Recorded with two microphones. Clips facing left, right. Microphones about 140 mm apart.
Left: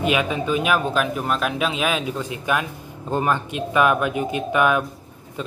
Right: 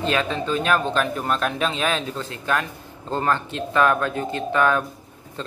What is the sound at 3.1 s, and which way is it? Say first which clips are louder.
A man's voice: left 1 dB; 15° left (ahead or behind).